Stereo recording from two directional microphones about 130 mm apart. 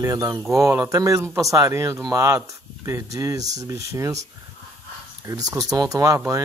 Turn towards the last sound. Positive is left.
turn(degrees=-25)  # may be behind; listen again after turning